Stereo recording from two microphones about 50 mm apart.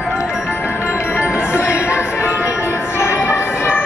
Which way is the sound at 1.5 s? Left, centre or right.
Right.